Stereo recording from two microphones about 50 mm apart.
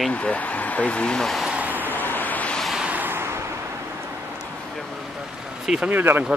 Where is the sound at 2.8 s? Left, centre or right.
Right.